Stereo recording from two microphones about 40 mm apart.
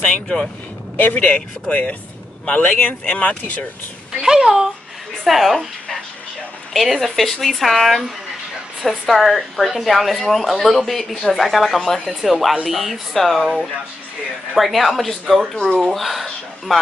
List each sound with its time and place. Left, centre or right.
0.0 s boat: left
0.9 s speech: left
1.2 s speech: left
4.2 s speech: centre
5.2 s speech: centre
9.1 s speech: centre
14.6 s speech: centre
15.5 s speech: centre
15.9 s speech: centre